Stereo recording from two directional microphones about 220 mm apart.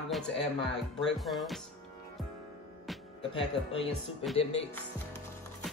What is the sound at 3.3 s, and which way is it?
Speech, 25° left (ahead or behind).